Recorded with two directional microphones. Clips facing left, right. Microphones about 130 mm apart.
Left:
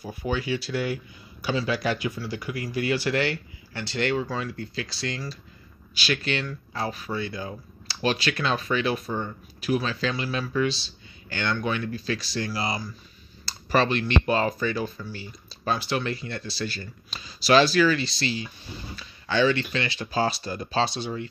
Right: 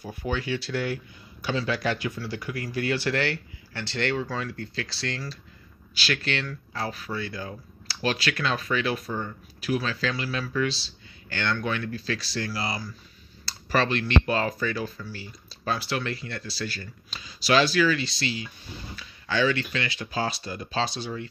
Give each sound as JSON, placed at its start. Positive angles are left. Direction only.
{"t": 0.0, "sound": "speech", "side_deg": 10}